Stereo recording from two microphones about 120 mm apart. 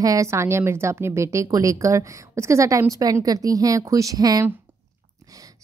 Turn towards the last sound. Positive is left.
turn(degrees=-30)  # may be behind; listen again after turning